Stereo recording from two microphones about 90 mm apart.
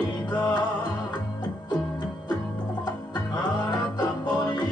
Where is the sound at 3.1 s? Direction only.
55° left (ahead or behind).